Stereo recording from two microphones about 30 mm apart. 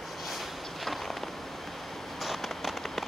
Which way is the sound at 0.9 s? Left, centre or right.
Centre.